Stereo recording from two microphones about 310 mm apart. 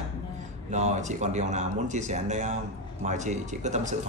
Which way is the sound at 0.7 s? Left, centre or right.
Right.